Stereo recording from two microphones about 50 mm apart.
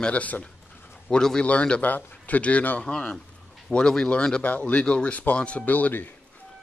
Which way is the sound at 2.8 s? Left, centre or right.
Centre.